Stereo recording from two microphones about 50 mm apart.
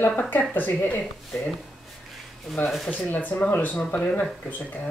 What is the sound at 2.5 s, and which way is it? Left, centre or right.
Speech, centre.